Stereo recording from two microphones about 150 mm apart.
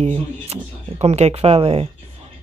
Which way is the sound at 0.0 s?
45° right (ahead or behind).